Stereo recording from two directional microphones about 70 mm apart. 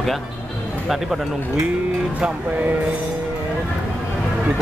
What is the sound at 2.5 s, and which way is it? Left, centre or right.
Speech, right.